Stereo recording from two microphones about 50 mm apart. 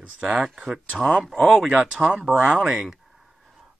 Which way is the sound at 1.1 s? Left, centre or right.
Centre.